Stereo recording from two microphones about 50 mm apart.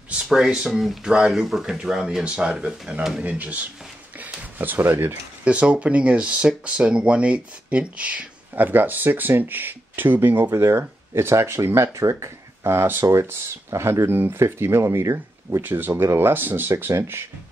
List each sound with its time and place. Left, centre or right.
0.3 s speech: centre
3.3 s speech: right
4.2 s a sound: right
5.4 s speech: right
10.5 s speech: right
11.1 s speech: right
12.6 s speech: right
13.0 s speech: right
15.6 s speech: right
16.0 s speech: right
16.8 s speech: right